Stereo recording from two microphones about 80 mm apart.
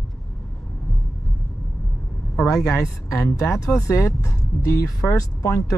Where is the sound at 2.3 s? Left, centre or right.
Left.